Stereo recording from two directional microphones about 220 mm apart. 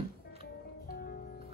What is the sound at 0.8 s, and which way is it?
Music, 40° left (ahead or behind).